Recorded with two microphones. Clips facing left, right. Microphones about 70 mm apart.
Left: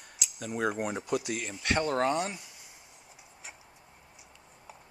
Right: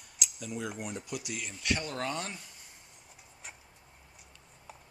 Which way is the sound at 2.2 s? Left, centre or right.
Centre.